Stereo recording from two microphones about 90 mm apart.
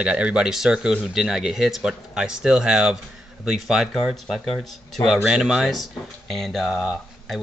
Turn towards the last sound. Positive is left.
turn(degrees=0)  # may be behind; listen again after turning